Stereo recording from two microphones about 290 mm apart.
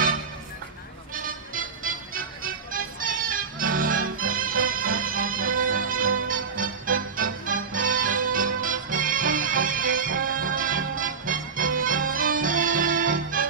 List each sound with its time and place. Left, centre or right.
1.1 s music: right